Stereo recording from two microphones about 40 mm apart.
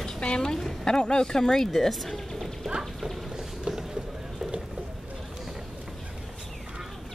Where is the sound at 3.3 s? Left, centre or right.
Centre.